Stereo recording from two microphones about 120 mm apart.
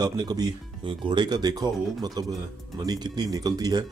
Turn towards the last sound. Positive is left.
turn(degrees=-35)  # may be behind; listen again after turning